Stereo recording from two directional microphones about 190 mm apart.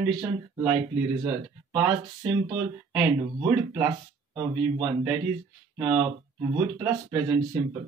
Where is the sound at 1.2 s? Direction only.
15° right (ahead or behind).